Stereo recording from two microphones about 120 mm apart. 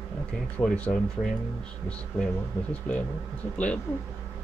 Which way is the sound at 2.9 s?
5° left (ahead or behind).